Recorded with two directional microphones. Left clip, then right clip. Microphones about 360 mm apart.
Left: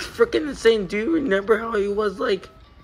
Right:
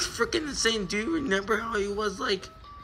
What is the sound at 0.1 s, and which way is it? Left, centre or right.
A man's voice, centre.